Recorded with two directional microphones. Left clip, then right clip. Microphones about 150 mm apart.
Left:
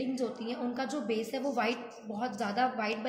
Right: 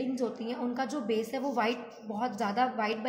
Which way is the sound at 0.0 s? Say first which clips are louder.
Right 1 dB; 45° right (ahead or behind).